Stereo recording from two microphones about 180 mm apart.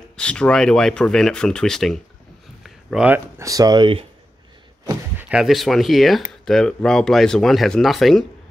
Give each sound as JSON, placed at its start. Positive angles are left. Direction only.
{"t": 0.2, "sound": "speech", "side_deg": 5}
{"t": 2.6, "sound": "a sound", "side_deg": -5}
{"t": 3.3, "sound": "speech", "side_deg": -20}
{"t": 5.3, "sound": "speech", "side_deg": 0}